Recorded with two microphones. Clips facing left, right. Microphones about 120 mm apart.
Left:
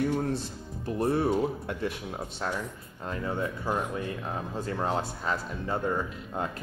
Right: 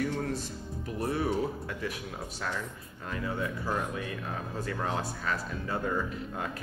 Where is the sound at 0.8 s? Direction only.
30° left (ahead or behind).